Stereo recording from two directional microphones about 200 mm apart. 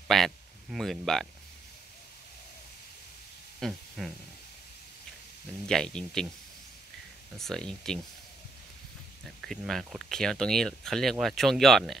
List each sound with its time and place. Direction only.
0.1 s speech: centre (ahead or behind)
3.5 s speech: centre (ahead or behind)
5.7 s speech: 5° left (ahead or behind)
7.3 s speech: centre (ahead or behind)
9.2 s speech: centre (ahead or behind)